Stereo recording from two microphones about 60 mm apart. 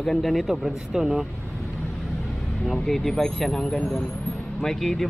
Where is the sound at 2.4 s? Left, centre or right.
Centre.